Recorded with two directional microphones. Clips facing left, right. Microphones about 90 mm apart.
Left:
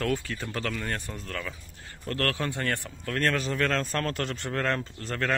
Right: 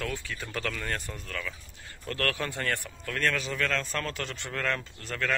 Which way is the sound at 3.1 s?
40° left (ahead or behind).